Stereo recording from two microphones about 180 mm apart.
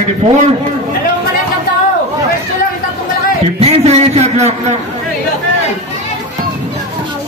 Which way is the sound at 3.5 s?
35° right (ahead or behind).